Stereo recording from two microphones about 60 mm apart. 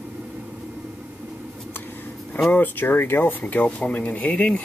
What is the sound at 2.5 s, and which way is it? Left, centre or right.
Speech, left.